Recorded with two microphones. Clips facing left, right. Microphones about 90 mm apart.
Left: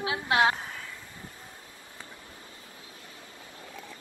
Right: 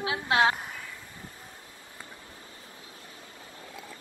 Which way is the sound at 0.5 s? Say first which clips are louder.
Even; 5° right (ahead or behind).